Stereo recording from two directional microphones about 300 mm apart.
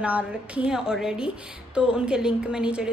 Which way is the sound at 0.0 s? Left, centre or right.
Centre.